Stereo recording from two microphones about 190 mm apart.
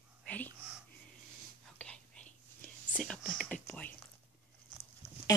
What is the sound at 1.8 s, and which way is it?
Whispering, 5° left (ahead or behind).